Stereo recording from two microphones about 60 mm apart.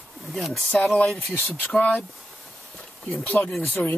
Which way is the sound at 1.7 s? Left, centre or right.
Left.